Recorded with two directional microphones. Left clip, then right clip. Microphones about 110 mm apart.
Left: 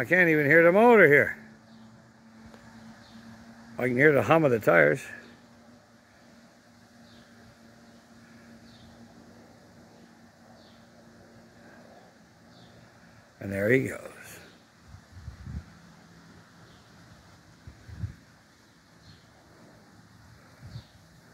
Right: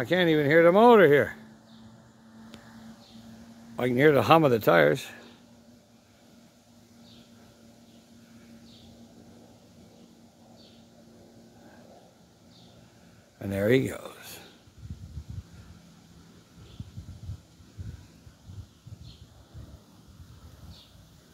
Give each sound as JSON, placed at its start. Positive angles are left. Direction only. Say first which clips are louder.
{"t": 0.1, "sound": "speech", "louder": "left 2 dB", "side_deg": -25}
{"t": 0.5, "sound": "speech", "louder": "right 1 dB", "side_deg": -5}
{"t": 0.7, "sound": "speech", "louder": "right 2 dB", "side_deg": -20}
{"t": 3.7, "sound": "speech", "louder": "even", "side_deg": -25}
{"t": 13.4, "sound": "speech", "louder": "even", "side_deg": -25}